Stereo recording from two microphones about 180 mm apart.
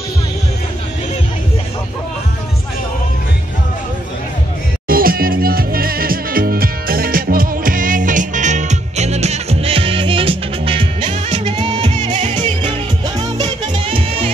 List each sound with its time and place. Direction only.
4.8 s music: 55° right (ahead or behind); by 14.3 s 30° right (ahead or behind)